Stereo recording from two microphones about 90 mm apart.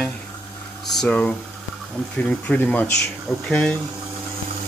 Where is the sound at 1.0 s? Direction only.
15° left (ahead or behind).